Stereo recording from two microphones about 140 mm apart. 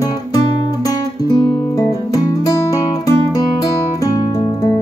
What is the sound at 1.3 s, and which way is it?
Music, 25° left (ahead or behind).